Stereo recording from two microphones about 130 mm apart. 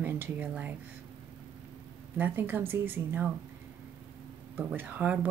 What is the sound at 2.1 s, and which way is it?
Speech, 15° right (ahead or behind).